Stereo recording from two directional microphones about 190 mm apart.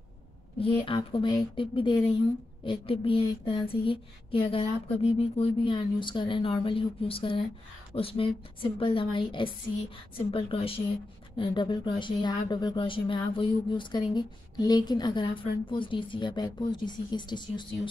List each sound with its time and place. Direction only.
0.6 s speech: 30° left (ahead or behind)